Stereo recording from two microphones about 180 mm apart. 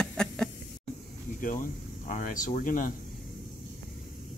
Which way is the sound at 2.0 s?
45° left (ahead or behind).